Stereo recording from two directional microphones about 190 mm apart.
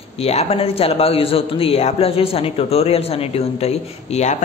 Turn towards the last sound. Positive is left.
turn(degrees=35)  # may be behind; listen again after turning